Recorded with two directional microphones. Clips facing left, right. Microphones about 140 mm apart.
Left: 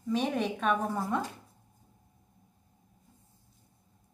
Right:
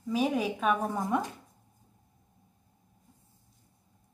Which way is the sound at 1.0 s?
20° right (ahead or behind).